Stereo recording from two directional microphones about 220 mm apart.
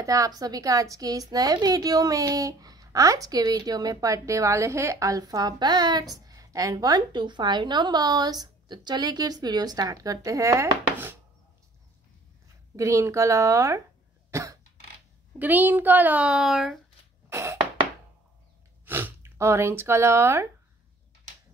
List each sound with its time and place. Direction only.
0.0 s a woman's voice: 15° right (ahead or behind)
12.7 s a woman's voice: 15° right (ahead or behind)
14.3 s cough: 15° right (ahead or behind)
15.3 s a woman's voice: 10° right (ahead or behind)
17.3 s a sound: 10° right (ahead or behind)
18.9 s speech: 10° right (ahead or behind)